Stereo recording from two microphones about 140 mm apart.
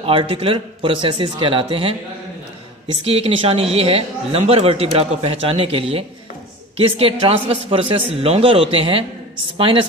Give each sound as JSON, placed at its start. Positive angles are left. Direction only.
{"t": 0.0, "sound": "a woman's voice", "side_deg": -40}